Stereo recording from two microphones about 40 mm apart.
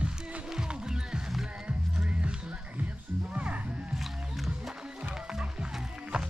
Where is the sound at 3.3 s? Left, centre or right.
Right.